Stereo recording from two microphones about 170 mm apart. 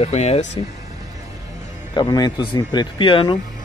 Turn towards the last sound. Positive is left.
turn(degrees=30)  # may be behind; listen again after turning